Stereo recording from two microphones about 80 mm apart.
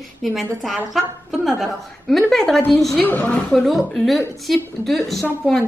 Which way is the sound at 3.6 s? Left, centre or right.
Centre.